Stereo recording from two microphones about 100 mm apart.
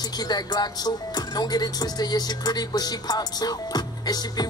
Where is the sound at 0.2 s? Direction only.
40° left (ahead or behind).